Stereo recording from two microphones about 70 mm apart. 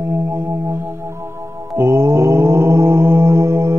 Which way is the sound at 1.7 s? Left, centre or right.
Right.